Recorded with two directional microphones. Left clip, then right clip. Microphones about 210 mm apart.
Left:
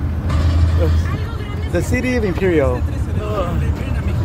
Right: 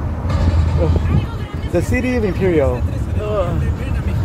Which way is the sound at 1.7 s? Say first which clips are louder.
Right 1 dB; 10° right (ahead or behind).